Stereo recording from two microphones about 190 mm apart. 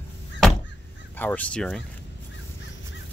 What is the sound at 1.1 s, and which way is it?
Speech, 10° left (ahead or behind).